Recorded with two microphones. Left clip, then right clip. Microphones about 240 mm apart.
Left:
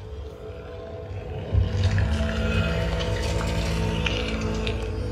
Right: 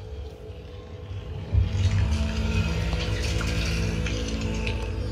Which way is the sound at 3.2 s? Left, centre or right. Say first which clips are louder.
Left 2 dB; left.